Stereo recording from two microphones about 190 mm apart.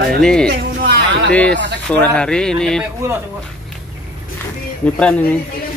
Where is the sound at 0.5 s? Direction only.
55° right (ahead or behind).